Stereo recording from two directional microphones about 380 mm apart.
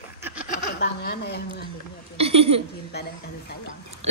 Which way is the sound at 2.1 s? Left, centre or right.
Centre.